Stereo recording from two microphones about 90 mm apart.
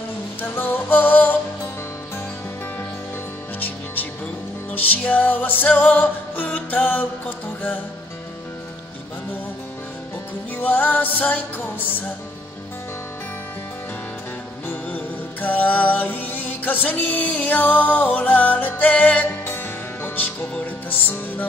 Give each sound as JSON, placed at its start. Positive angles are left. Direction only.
{"t": 0.4, "sound": "music", "side_deg": 20}
{"t": 3.5, "sound": "music", "side_deg": 20}
{"t": 10.5, "sound": "music", "side_deg": 20}
{"t": 14.7, "sound": "music", "side_deg": 20}